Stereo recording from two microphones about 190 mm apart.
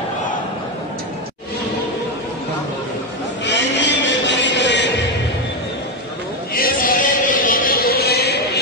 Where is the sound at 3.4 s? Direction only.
70° left (ahead or behind).